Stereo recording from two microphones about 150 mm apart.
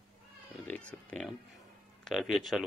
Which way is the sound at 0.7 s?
10° left (ahead or behind).